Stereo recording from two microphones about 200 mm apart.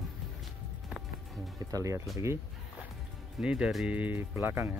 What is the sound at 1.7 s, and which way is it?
Speech, 15° right (ahead or behind).